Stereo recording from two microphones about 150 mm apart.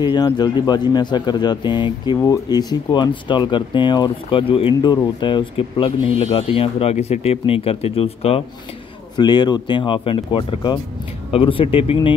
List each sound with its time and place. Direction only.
0.0 s a man's voice: 30° left (ahead or behind)
9.1 s speech: 30° left (ahead or behind)